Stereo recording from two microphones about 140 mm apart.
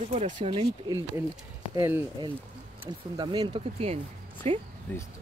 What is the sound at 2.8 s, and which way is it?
Speech, 30° right (ahead or behind).